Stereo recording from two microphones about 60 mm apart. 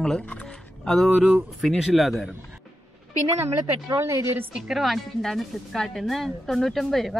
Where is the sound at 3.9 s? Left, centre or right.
Right.